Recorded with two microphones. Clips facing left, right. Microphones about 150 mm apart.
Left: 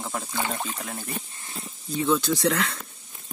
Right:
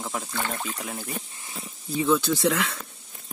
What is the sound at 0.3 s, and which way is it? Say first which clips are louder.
Speech: left 1 dB; 15° left (ahead or behind).